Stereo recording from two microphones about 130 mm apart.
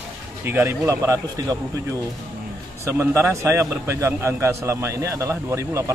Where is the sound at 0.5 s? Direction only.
20° right (ahead or behind).